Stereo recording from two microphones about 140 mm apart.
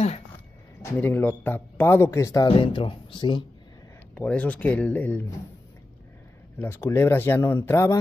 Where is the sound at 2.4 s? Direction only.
40° left (ahead or behind).